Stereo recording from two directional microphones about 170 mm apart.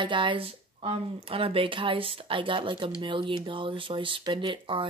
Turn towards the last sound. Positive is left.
turn(degrees=-30)  # may be behind; listen again after turning